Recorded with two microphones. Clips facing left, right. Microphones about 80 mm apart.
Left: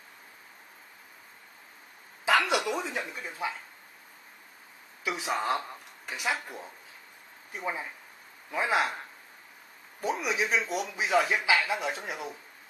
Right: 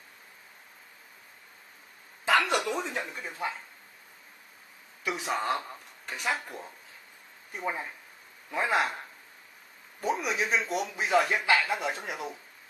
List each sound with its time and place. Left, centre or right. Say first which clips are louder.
2.2 s a sound: even; centre
2.8 s speech: even; centre
5.0 s speech: even; centre
9.9 s speech: even; centre